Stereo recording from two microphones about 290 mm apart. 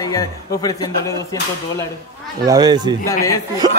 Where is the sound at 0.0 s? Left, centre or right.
Centre.